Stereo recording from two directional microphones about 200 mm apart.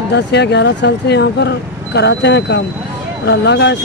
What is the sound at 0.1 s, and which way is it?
Speech, 55° left (ahead or behind).